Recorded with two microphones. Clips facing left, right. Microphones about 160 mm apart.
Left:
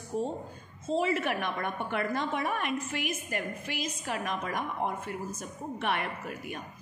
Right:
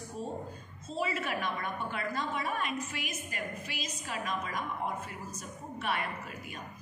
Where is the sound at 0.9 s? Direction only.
55° left (ahead or behind).